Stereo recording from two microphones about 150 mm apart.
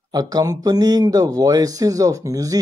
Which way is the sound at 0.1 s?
25° right (ahead or behind).